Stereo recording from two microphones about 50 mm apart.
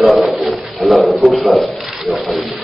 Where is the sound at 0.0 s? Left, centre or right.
Centre.